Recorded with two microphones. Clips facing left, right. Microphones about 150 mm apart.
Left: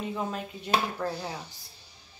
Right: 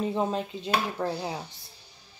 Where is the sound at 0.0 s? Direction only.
30° right (ahead or behind).